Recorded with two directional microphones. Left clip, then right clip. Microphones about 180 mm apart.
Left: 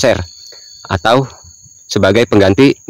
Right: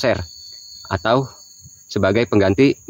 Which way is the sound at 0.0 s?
40° left (ahead or behind).